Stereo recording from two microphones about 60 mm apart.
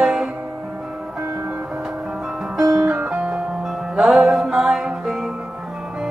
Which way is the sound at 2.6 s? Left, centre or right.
Centre.